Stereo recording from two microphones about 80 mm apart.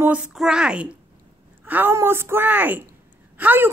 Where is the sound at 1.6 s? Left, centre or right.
Right.